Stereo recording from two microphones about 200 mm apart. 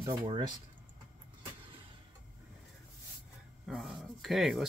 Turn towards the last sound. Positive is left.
turn(degrees=0)  # may be behind; listen again after turning